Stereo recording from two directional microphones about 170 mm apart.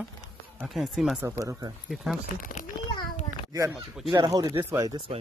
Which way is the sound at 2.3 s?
55° left (ahead or behind).